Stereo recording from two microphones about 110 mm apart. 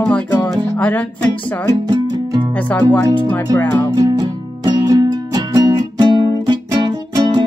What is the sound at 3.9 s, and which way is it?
Music, 35° right (ahead or behind).